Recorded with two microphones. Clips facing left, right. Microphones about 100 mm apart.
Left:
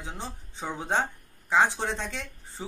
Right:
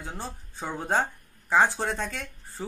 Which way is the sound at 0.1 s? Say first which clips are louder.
Right 1 dB; 5° right (ahead or behind).